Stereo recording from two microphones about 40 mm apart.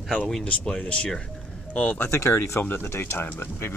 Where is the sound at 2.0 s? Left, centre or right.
Left.